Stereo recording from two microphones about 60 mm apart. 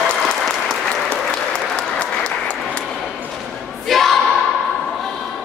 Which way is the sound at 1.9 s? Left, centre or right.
Centre.